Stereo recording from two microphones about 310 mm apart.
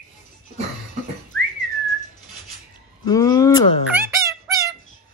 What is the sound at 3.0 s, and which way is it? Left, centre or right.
Speech, centre.